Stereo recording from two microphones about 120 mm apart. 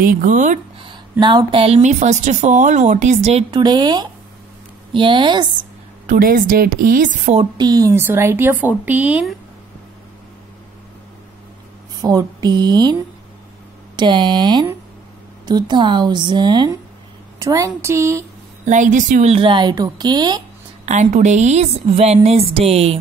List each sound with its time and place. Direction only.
0.2 s a woman's voice: 90° right
1.2 s speech: 45° right (ahead or behind); by 3.4 s 60° right (ahead or behind)
3.5 s a woman's voice: 35° right (ahead or behind)
7.0 s a woman's voice: 85° right
7.5 s a woman's voice: 35° right (ahead or behind)
7.9 s a woman's voice: 20° right (ahead or behind)
12.0 s a woman's voice: 30° right (ahead or behind)
13.9 s a woman's voice: 40° right (ahead or behind)
17.4 s speech: 25° right (ahead or behind)
18.7 s a woman's voice: 90° right
19.3 s a woman's voice: 45° right (ahead or behind)
20.8 s a woman's voice: 80° right; by 22.9 s 55° right (ahead or behind)